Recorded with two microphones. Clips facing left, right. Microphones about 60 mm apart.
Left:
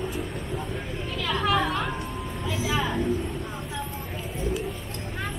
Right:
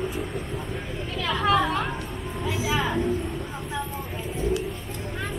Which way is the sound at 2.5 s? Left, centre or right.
Centre.